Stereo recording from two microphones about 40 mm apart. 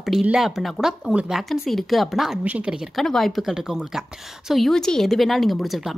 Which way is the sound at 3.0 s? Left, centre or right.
Centre.